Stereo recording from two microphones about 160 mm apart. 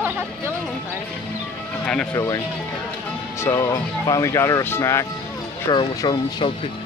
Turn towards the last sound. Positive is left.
turn(degrees=25)  # may be behind; listen again after turning